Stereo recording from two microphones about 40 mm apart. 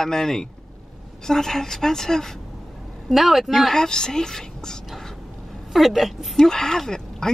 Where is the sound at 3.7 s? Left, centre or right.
Centre.